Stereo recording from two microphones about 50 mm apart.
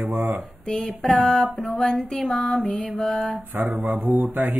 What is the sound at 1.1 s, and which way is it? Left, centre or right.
Mantra, centre.